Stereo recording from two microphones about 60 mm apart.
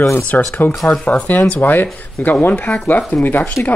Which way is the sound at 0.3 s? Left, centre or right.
Left.